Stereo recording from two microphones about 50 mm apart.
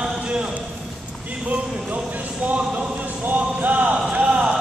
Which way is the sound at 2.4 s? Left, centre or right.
Right.